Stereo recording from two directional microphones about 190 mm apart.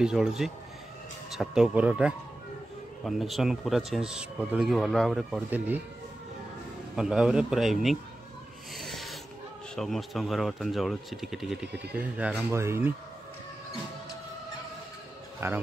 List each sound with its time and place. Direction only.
0.0 s speech: 5° right (ahead or behind)
7.0 s speech: 5° right (ahead or behind)
8.7 s filing: centre (ahead or behind)
9.8 s speech: centre (ahead or behind)
15.4 s speech: 15° right (ahead or behind)